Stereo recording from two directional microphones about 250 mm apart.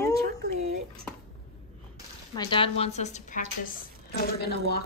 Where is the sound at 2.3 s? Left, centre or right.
Centre; by 4.3 s left.